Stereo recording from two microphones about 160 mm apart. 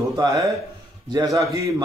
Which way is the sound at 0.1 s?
25° right (ahead or behind).